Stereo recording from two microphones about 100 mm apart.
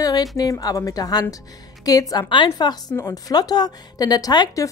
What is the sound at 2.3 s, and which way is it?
A woman's voice, 55° left (ahead or behind).